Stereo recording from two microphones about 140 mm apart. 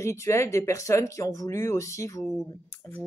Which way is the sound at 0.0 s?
20° left (ahead or behind).